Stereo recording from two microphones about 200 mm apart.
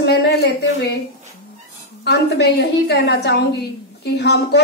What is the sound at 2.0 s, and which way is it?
Speech, 55° left (ahead or behind).